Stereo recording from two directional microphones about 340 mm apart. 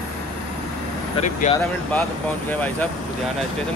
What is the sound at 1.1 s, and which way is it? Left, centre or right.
Speech, left.